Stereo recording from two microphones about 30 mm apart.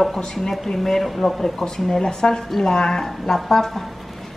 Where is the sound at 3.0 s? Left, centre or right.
Centre.